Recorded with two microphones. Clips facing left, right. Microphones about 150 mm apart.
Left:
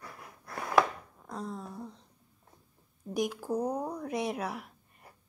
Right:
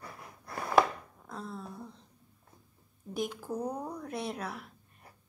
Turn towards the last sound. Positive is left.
turn(degrees=10)  # may be behind; listen again after turning